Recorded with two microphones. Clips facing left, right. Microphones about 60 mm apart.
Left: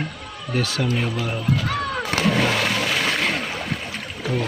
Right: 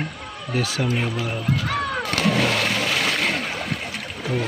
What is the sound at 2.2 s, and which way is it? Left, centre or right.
Splash, centre.